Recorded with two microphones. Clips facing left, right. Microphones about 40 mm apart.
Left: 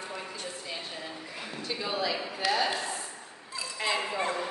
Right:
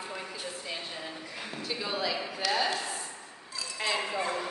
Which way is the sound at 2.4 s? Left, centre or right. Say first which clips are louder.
Left 2 dB; centre.